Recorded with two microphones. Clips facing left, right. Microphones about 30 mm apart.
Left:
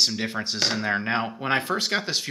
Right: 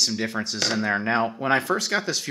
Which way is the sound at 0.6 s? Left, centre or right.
Centre.